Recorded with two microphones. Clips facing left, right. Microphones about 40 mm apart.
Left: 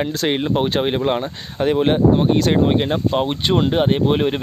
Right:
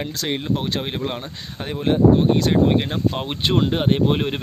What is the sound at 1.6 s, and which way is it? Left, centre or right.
Speech, left.